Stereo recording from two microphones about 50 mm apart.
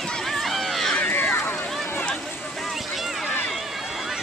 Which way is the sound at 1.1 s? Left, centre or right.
Left.